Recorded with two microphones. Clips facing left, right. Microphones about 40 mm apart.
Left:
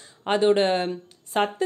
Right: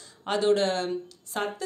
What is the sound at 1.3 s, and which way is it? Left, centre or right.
Speech, left.